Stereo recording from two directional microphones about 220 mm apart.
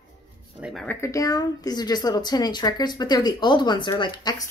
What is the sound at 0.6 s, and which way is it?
Speech, 5° left (ahead or behind).